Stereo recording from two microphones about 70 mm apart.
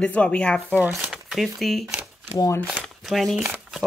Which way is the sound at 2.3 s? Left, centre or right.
Left.